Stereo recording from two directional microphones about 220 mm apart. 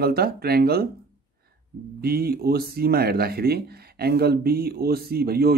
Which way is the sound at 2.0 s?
45° right (ahead or behind).